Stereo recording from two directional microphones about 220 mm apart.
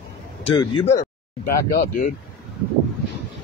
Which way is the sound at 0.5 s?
25° left (ahead or behind).